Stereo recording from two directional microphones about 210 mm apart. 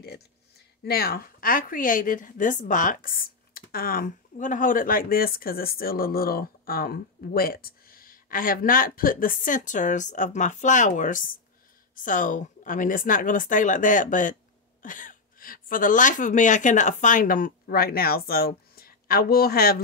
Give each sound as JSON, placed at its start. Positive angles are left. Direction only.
{"t": 0.8, "sound": "a woman's voice", "side_deg": 45}